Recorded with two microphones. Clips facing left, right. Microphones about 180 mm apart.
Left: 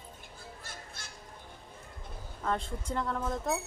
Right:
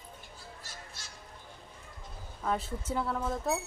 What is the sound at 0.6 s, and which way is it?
Crow, 55° left (ahead or behind).